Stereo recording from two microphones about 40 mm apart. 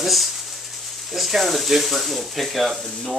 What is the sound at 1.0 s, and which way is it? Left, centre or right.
Speech, centre.